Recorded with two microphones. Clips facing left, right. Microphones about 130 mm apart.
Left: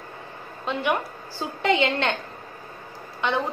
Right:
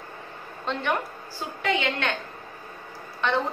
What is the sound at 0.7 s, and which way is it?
Speech, 5° left (ahead or behind).